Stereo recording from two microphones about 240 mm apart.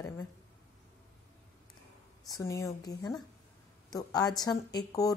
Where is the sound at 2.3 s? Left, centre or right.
Centre.